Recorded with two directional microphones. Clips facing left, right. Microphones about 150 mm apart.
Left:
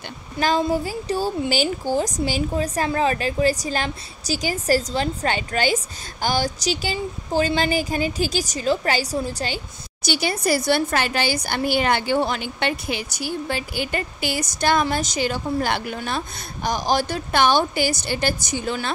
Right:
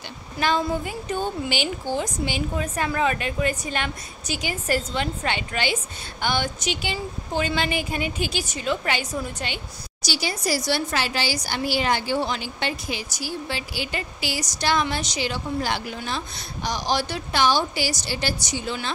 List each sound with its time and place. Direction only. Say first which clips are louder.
0.4 s a woman's voice: left 3 dB; 35° left (ahead or behind)
10.0 s a woman's voice: left 5 dB; 55° left (ahead or behind)